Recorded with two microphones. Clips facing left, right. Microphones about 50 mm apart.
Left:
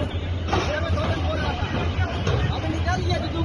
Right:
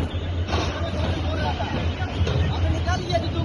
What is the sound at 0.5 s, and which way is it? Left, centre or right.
Vehicle, left.